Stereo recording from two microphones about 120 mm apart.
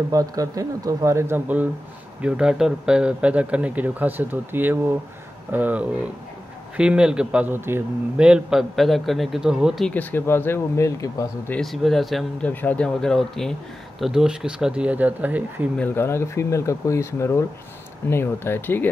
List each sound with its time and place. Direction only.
0.1 s speech: 30° right (ahead or behind)
8.2 s speech: 5° right (ahead or behind)
9.8 s speech: 15° left (ahead or behind)
11.6 s speech: centre (ahead or behind)
12.4 s speech: 10° left (ahead or behind); by 15.7 s 15° right (ahead or behind)
15.8 s speech: 20° left (ahead or behind)